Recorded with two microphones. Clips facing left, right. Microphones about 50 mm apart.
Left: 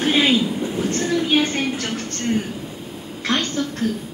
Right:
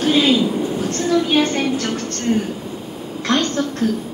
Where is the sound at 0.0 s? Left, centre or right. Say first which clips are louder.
Right 2 dB; left.